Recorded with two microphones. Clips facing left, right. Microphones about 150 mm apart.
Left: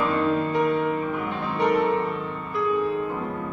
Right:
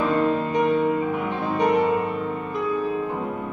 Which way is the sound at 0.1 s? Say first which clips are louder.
Right 1 dB; 20° right (ahead or behind).